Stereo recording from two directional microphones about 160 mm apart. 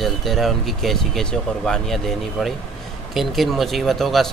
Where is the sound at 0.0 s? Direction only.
Centre (ahead or behind).